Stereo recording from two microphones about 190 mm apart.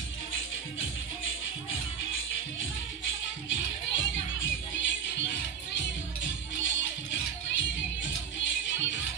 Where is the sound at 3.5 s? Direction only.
80° left.